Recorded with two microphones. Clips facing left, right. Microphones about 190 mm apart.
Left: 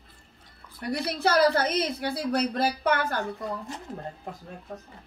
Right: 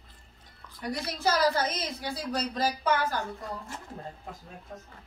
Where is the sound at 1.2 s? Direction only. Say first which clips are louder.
Left 4 dB; 60° left (ahead or behind).